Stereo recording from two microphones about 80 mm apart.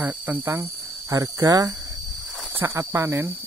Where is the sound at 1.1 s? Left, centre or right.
Right.